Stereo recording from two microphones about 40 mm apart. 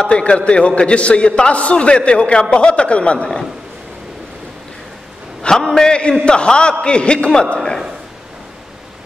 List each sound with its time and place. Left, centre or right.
0.0 s a man's voice: left
5.4 s a man's voice: centre
7.5 s a sound: centre